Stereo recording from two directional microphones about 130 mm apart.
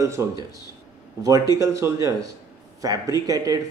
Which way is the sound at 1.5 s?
25° right (ahead or behind).